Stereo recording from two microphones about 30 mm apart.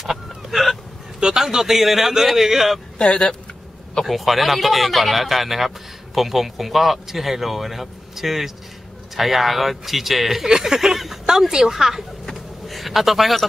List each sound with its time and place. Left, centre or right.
0.0 s hiccup: centre
1.2 s a man's voice: centre
4.0 s a man's voice: centre
12.6 s speech: centre